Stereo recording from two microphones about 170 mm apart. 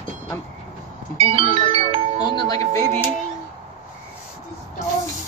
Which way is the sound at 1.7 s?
35° right (ahead or behind).